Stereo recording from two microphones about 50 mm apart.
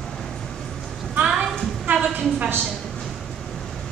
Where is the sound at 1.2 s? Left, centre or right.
Centre.